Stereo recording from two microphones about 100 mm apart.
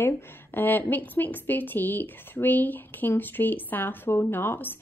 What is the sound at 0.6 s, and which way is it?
Speech, 20° left (ahead or behind).